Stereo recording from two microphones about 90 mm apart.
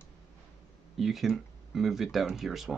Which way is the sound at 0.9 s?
Centre (ahead or behind).